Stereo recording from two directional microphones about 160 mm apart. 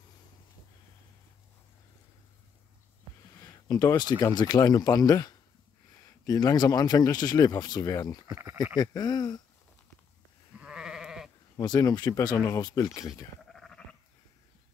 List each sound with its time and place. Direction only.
3.3 s speech: 25° left (ahead or behind)
10.6 s goat: 5° right (ahead or behind)
11.5 s speech: 25° left (ahead or behind)
13.4 s sheep: 5° left (ahead or behind)